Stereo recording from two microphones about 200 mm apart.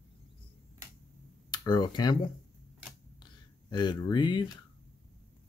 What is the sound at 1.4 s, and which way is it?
Speech, 20° left (ahead or behind).